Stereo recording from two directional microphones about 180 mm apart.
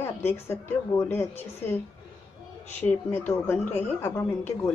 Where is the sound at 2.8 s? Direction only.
10° left (ahead or behind).